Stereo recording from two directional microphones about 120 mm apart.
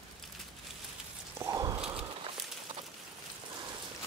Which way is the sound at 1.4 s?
30° right (ahead or behind).